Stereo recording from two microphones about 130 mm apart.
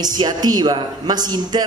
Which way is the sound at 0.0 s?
30° right (ahead or behind).